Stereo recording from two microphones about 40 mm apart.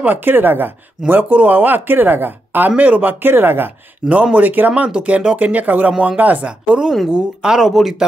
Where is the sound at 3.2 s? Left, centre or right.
Right.